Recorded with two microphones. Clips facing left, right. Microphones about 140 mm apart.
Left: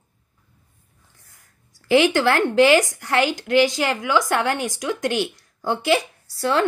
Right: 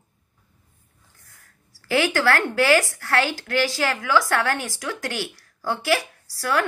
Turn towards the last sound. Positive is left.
turn(degrees=25)  # may be behind; listen again after turning